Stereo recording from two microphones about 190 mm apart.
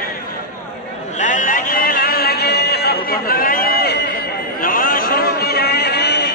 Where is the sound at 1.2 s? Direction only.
45° left (ahead or behind).